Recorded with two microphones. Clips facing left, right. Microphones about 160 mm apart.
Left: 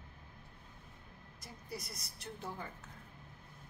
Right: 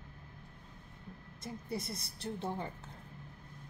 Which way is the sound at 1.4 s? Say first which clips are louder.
Right 7 dB; 25° right (ahead or behind).